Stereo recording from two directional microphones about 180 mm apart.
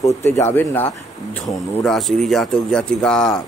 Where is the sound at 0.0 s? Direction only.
15° left (ahead or behind).